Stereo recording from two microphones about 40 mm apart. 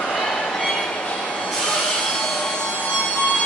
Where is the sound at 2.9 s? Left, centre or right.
Centre.